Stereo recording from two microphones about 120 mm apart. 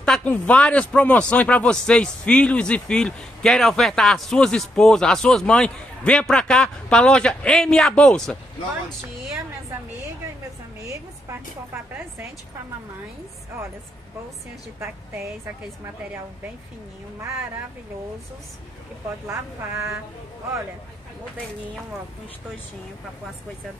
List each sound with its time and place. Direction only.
0.0 s a man's voice: 10° left (ahead or behind)
10.8 s a woman's voice: 25° right (ahead or behind)
19.2 s speech: 25° right (ahead or behind)